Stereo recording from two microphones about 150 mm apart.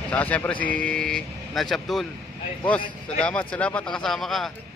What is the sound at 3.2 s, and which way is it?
Speech, 10° left (ahead or behind).